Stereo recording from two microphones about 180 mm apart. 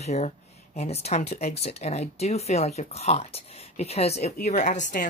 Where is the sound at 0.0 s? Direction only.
35° left (ahead or behind).